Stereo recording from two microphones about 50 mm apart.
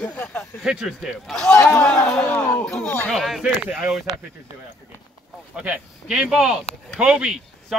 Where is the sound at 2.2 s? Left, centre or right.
Left.